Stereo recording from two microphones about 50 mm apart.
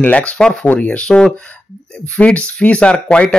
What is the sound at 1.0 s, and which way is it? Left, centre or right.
Speech, centre.